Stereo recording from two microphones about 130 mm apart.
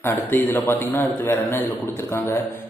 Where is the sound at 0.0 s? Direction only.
15° left (ahead or behind).